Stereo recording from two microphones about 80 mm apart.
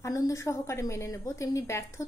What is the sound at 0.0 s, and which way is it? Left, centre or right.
A woman's voice, left.